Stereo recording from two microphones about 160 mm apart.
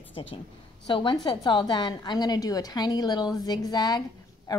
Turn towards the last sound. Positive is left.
turn(degrees=25)  # may be behind; listen again after turning